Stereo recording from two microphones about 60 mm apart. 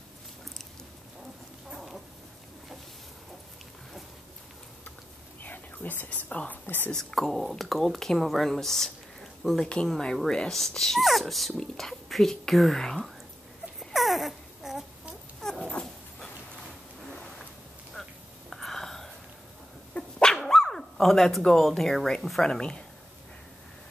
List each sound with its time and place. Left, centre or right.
1.7 s dog: centre
5.4 s speech: left
6.6 s speech: left
6.9 s speech: centre
13.7 s a sound: centre
15.4 s dog: centre
18.0 s whispering: centre
19.9 s dog: centre